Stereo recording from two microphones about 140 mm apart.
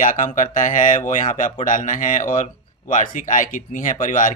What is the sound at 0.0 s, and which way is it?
A man's voice, 65° left (ahead or behind).